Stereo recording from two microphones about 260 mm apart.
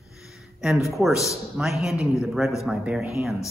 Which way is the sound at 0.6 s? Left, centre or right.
Centre.